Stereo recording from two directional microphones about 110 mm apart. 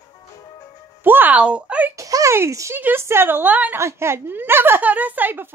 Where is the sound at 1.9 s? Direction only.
30° right (ahead or behind).